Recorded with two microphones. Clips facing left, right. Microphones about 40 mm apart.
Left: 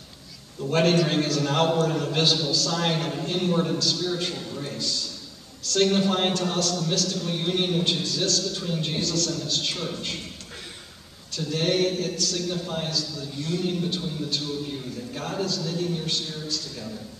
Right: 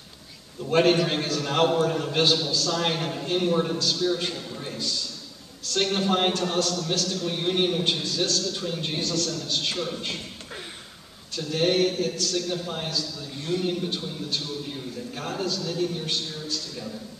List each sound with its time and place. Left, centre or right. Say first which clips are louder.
0.7 s a man's voice: right 1 dB; centre
11.3 s a man's voice: right 1 dB; centre
13.4 s a man's voice: right 1 dB; centre
13.7 s a man's voice: left 1 dB; centre